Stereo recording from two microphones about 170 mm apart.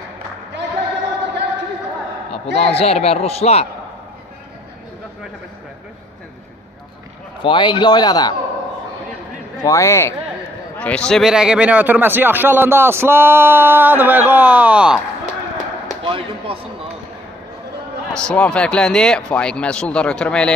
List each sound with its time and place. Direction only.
2.3 s a man's voice: 35° left (ahead or behind)
7.4 s a man's voice: 25° left (ahead or behind)
9.6 s a man's voice: 15° left (ahead or behind); by 15.0 s 5° right (ahead or behind)
16.0 s basketball bounce: 30° right (ahead or behind)
18.1 s speech: 5° left (ahead or behind)